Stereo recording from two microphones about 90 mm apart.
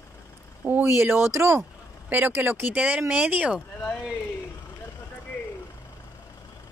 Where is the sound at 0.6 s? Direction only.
25° right (ahead or behind).